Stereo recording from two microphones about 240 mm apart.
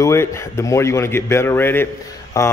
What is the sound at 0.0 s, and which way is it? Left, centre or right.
A man's voice, centre.